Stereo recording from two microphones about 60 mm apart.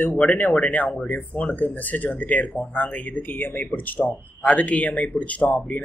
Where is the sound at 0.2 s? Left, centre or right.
Left.